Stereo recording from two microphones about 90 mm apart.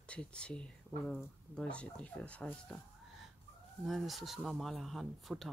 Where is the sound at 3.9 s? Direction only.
Centre (ahead or behind).